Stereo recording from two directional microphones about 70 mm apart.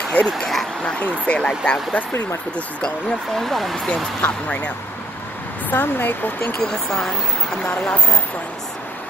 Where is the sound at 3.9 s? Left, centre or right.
Centre.